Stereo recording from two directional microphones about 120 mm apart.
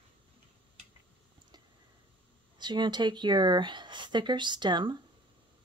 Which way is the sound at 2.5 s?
40° right (ahead or behind).